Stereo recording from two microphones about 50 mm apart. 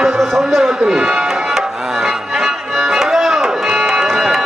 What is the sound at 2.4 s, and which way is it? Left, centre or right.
Music, centre.